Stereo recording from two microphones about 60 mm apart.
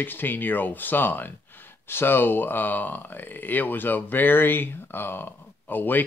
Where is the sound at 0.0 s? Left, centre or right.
Left.